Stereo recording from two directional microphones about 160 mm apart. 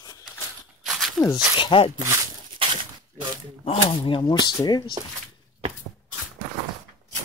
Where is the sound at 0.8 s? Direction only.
Centre (ahead or behind).